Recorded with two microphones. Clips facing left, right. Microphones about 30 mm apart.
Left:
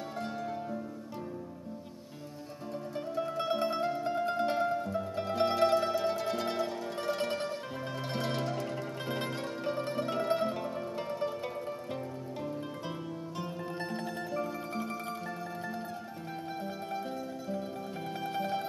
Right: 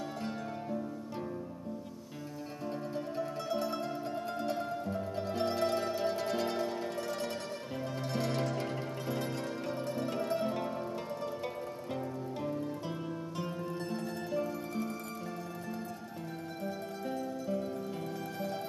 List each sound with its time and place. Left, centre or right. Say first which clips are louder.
3.2 s music: left 5 dB; left
9.0 s music: left 1 dB; left
17.1 s music: right 2 dB; centre
18.3 s music: left 7 dB; left